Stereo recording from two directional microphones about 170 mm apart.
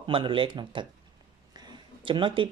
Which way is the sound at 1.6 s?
25° right (ahead or behind).